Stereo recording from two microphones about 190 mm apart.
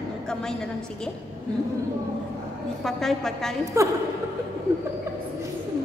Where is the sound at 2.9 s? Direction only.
Centre (ahead or behind).